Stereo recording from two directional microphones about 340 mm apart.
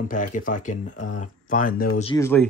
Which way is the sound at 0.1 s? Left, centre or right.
Left.